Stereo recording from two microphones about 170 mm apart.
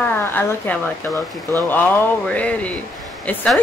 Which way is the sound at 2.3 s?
10° left (ahead or behind).